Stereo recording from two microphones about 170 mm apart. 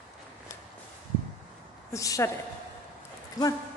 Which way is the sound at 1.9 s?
20° left (ahead or behind).